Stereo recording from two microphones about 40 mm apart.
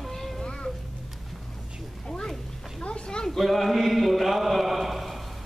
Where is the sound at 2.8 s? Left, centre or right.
Left.